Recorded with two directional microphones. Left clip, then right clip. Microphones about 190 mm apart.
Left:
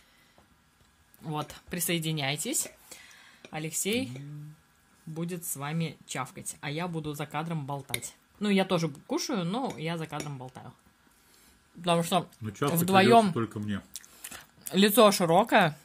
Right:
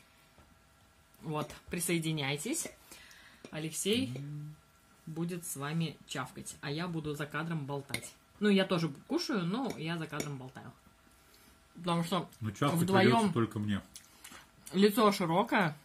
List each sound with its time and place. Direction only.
1.2 s speech: 40° left (ahead or behind)
3.5 s speech: 60° left (ahead or behind)
5.1 s speech: 55° left (ahead or behind)
11.8 s speech: 50° left (ahead or behind)
12.4 s speech: centre (ahead or behind)
12.7 s speech: 50° left (ahead or behind)
13.3 s speech: 5° right (ahead or behind)
13.9 s speech: 55° left (ahead or behind)